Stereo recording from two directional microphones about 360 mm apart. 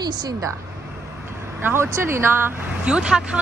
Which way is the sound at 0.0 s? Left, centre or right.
Centre.